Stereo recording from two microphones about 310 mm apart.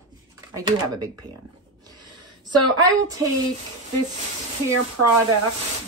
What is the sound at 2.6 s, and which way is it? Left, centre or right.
Speech, centre.